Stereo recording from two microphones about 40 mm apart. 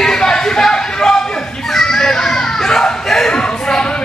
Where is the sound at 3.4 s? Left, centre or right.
Centre.